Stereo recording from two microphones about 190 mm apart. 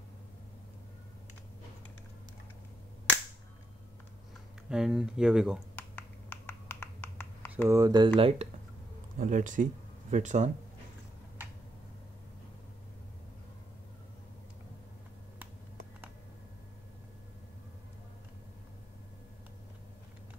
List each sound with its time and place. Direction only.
4.6 s speech: 5° right (ahead or behind)
5.8 s finger snapping: 10° left (ahead or behind)
7.6 s speech: 15° right (ahead or behind)
9.2 s speech: 45° right (ahead or behind)